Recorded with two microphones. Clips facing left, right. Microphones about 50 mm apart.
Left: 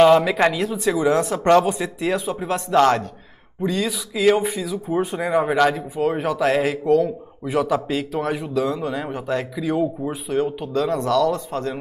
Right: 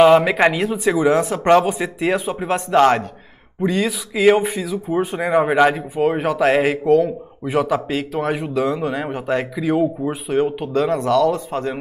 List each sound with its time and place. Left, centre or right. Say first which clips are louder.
0.2 s speech: right 3 dB; right